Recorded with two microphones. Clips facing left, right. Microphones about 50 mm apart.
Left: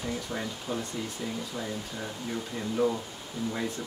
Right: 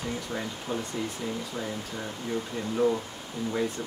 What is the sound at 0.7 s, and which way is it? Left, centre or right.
Speech, right.